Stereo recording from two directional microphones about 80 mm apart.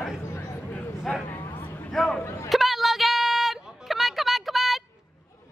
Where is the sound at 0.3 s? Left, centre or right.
Left.